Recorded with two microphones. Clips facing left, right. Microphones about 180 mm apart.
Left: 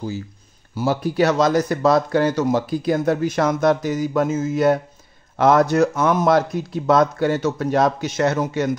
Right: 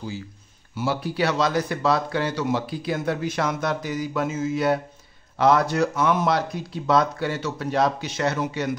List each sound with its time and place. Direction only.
0.7 s speech: 45° left (ahead or behind)